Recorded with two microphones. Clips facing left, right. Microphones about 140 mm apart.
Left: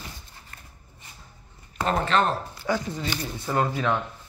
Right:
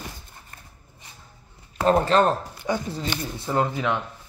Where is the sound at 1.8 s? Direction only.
35° right (ahead or behind).